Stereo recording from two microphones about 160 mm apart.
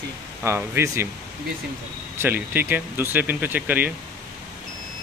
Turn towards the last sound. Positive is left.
turn(degrees=-10)  # may be behind; listen again after turning